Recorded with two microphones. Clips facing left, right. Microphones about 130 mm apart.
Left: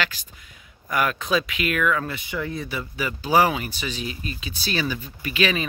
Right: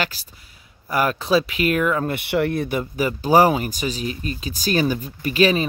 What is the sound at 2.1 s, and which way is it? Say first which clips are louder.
Speech: right 8 dB; 65° right (ahead or behind).